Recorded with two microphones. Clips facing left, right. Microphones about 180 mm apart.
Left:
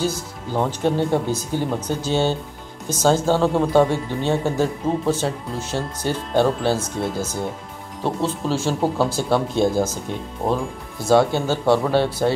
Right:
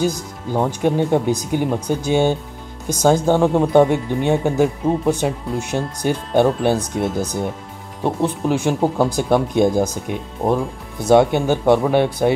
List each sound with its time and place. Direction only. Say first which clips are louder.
0.0 s speech: right 3 dB; 15° right (ahead or behind)